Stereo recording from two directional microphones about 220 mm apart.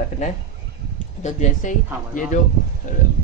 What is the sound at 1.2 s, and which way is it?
Speech, 35° left (ahead or behind).